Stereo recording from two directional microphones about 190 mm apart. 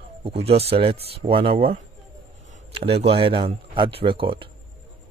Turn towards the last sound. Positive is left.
turn(degrees=-25)  # may be behind; listen again after turning